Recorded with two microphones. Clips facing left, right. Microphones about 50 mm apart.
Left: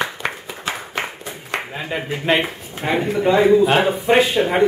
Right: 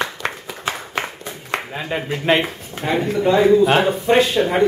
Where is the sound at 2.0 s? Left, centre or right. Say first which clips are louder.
Right 1 dB; centre.